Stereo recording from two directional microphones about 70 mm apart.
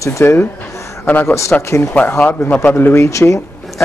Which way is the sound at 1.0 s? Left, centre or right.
Left.